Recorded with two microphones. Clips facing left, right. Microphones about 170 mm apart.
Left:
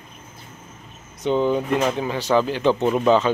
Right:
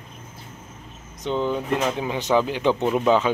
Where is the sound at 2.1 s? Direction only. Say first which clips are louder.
Left 1 dB; 20° right (ahead or behind).